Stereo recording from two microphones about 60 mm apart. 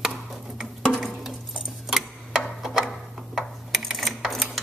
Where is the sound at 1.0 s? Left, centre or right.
Centre.